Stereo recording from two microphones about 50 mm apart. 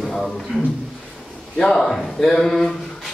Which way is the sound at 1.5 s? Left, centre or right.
Centre.